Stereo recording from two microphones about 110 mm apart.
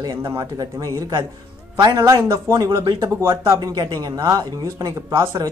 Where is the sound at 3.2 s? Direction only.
25° right (ahead or behind).